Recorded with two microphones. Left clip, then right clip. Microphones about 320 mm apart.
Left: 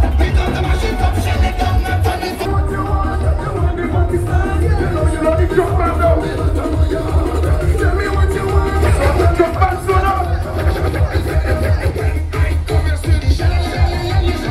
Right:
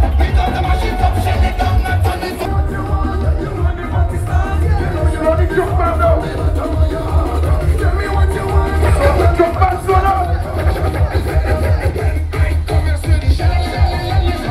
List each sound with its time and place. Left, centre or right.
0.2 s music: right
4.7 s music: right
7.8 s music: right